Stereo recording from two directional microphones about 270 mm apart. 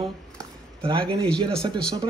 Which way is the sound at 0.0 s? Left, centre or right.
Centre.